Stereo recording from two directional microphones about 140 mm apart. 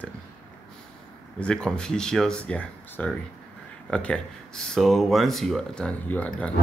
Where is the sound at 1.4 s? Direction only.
5° left (ahead or behind).